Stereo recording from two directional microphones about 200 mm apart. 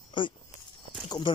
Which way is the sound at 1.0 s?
20° left (ahead or behind).